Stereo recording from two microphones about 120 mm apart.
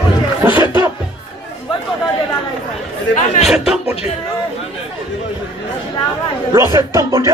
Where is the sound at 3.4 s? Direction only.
5° right (ahead or behind).